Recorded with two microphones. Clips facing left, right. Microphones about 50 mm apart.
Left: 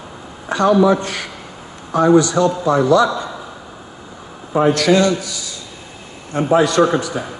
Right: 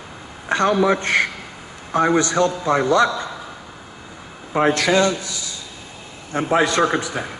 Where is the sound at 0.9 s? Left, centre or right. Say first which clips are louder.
Right 6 dB; right.